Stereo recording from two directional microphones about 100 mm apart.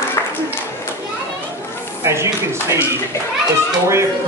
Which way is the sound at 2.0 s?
25° right (ahead or behind).